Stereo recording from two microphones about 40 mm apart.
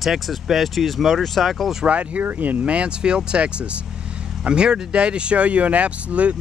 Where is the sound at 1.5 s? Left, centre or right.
Centre.